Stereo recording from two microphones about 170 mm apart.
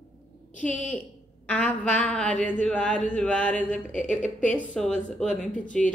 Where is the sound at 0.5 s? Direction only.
10° left (ahead or behind).